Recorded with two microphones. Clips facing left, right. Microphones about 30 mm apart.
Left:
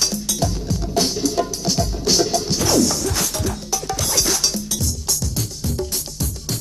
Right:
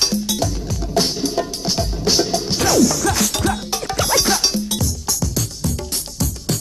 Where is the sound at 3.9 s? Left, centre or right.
Right.